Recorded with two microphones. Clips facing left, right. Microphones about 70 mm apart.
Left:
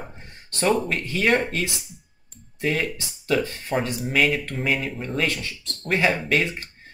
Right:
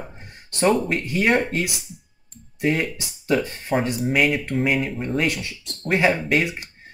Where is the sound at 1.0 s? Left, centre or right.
Centre.